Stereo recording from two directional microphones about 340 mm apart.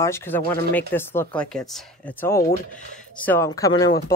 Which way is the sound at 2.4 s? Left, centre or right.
Left.